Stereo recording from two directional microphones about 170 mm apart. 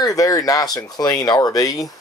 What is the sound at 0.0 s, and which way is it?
Speech, 20° left (ahead or behind).